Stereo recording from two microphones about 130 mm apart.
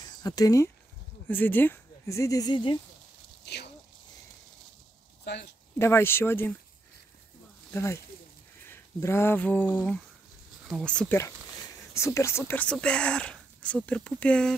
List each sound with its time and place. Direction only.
0.2 s speech: 25° left (ahead or behind)
1.2 s speech: 15° left (ahead or behind); by 2.8 s 35° left (ahead or behind)
5.8 s speech: 20° left (ahead or behind)
7.7 s speech: 20° left (ahead or behind)
11.9 s speech: 25° left (ahead or behind)